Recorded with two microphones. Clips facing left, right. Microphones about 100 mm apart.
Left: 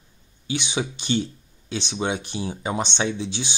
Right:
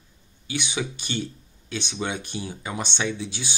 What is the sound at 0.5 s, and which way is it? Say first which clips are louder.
Speech: left 3 dB; 25° left (ahead or behind).